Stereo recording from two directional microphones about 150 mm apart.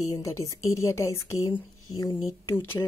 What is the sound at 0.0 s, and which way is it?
Speech, 20° left (ahead or behind).